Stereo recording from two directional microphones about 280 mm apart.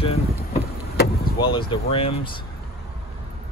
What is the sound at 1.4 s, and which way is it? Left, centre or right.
Speech, centre.